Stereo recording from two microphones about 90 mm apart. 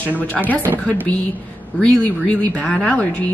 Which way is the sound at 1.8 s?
15° left (ahead or behind).